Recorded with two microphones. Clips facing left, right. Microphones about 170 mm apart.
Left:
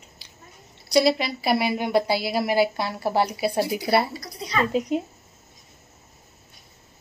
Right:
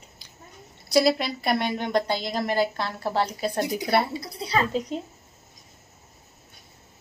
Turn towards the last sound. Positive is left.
turn(degrees=10)  # may be behind; listen again after turning